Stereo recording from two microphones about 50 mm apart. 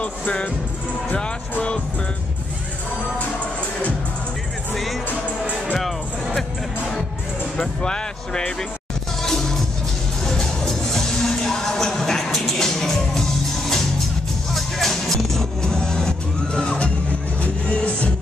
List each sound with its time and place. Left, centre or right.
0.0 s music: left
5.8 s music: centre
7.5 s speech: centre
9.2 s music: centre; by 18.1 s left